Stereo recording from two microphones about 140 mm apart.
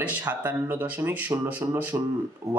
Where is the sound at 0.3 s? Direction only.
10° right (ahead or behind).